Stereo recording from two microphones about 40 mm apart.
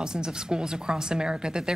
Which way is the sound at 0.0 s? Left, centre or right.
Centre.